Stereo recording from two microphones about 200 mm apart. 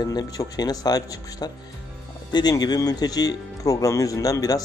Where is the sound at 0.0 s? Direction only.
20° left (ahead or behind).